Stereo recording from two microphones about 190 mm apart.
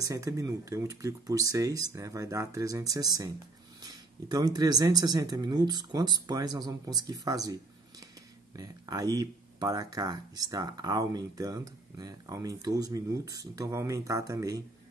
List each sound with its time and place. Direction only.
0.0 s speech: 20° right (ahead or behind)
8.5 s speech: 20° right (ahead or behind)